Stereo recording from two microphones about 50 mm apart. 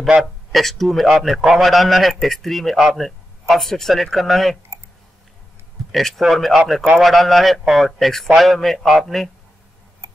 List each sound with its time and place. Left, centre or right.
0.2 s a man's voice: centre
5.9 s a man's voice: centre